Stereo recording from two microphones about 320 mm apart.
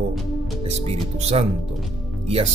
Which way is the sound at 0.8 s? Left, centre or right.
Centre.